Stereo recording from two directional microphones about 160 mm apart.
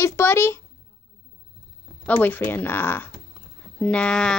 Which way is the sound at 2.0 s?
10° left (ahead or behind).